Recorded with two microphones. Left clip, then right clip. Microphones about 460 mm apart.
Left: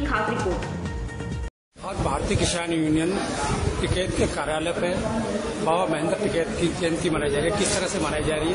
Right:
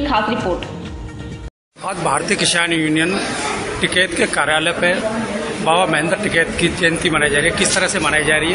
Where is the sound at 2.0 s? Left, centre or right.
Left.